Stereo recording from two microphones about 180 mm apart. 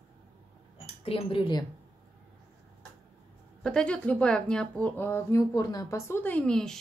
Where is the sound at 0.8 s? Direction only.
30° left (ahead or behind).